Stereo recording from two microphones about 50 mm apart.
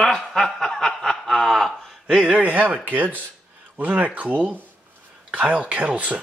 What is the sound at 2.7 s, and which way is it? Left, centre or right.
Speech, right.